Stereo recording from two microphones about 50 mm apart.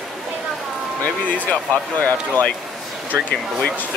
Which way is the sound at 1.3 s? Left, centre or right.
Left.